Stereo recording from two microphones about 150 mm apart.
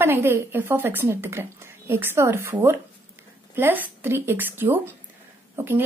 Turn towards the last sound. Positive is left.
turn(degrees=-15)  # may be behind; listen again after turning